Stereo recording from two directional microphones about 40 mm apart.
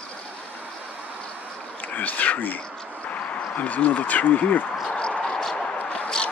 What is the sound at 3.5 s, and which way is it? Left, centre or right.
Speech, left.